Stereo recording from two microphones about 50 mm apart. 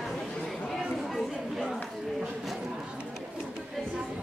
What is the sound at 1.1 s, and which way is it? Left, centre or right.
Chatter, centre.